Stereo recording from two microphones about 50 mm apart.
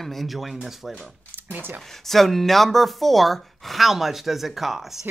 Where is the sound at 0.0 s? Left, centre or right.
Centre.